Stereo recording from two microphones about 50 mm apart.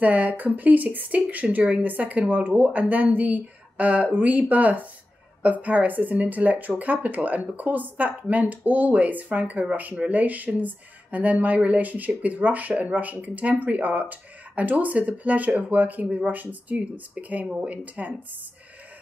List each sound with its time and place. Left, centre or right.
0.0 s speech: right